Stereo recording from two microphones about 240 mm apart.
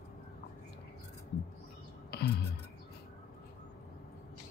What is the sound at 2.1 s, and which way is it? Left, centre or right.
Music, left.